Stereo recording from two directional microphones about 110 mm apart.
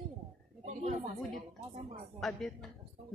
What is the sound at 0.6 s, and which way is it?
Speech, 80° right.